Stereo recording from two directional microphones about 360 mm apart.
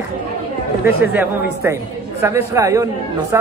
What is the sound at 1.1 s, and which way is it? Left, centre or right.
Speech, centre.